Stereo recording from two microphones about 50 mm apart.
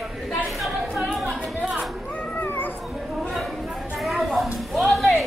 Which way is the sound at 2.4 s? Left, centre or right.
Left.